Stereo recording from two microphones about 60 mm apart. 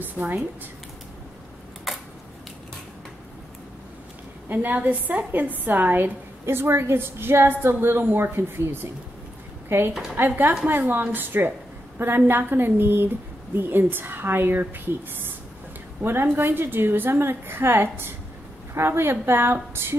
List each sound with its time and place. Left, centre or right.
0.0 s a woman's voice: right
1.9 s a sound: centre
4.5 s a woman's voice: right
6.4 s a woman's voice: right
16.0 s a woman's voice: right